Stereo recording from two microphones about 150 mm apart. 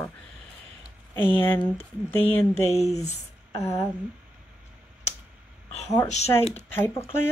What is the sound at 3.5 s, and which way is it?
Speech, 20° left (ahead or behind).